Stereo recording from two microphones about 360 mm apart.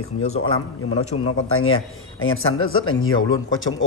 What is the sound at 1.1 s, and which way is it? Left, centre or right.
A man's voice, left.